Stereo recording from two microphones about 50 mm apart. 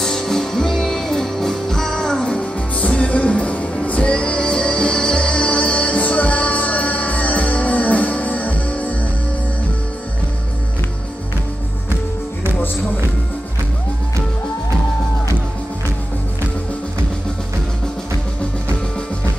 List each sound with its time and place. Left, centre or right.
0.0 s music: centre; by 8.9 s left